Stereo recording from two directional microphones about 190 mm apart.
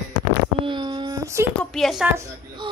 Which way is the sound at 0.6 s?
25° right (ahead or behind).